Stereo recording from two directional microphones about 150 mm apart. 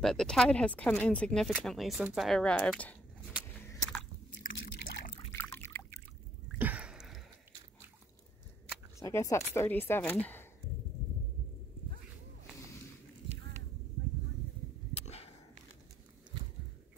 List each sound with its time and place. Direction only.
0.0 s speech: 5° left (ahead or behind)
4.4 s drip: 60° left (ahead or behind)
5.3 s water: 15° left (ahead or behind)
6.6 s a sound: 10° right (ahead or behind)
9.0 s speech: 20° left (ahead or behind)
15.0 s a sound: 45° left (ahead or behind)